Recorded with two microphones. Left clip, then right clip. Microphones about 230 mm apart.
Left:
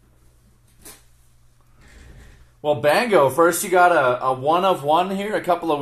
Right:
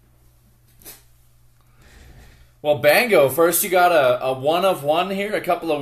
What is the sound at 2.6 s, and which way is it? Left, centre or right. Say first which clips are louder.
Speech: right 2 dB; centre.